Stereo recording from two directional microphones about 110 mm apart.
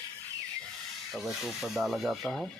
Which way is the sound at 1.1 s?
5° right (ahead or behind).